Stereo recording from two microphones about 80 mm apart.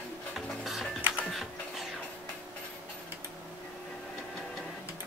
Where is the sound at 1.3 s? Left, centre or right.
Centre.